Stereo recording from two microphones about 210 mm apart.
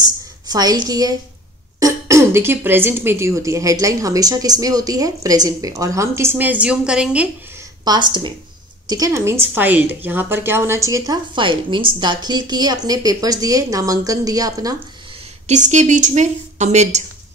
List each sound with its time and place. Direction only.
0.5 s a woman's voice: 20° right (ahead or behind)
7.8 s a woman's voice: 20° right (ahead or behind)
15.4 s speech: 35° right (ahead or behind)